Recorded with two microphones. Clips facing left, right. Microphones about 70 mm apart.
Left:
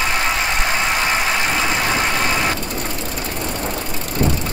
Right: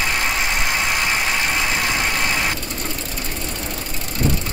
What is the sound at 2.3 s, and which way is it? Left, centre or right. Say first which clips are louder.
Vehicle: left 3 dB; left.